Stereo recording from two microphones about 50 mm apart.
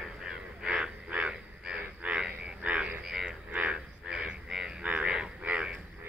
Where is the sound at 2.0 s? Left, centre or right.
Right.